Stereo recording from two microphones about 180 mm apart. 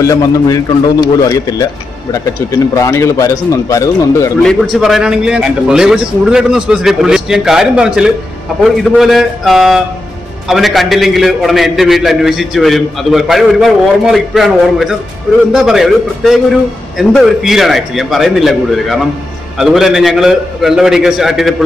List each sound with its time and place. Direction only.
0.0 s a man's voice: 20° left (ahead or behind)
4.4 s a man's voice: centre (ahead or behind)